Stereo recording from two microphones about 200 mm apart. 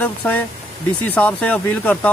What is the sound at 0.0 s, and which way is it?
Speech, 10° left (ahead or behind).